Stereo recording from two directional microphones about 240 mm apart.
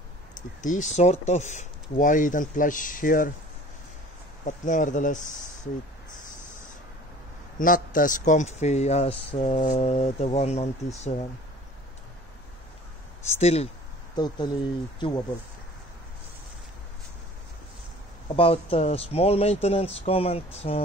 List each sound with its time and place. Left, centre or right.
0.6 s speech: left
4.5 s speech: left
7.5 s a man's voice: left
13.4 s a man's voice: left
18.3 s a man's voice: left